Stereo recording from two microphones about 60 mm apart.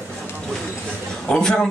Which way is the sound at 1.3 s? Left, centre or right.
Centre.